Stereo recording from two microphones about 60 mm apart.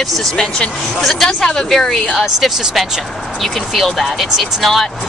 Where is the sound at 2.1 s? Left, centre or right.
Centre.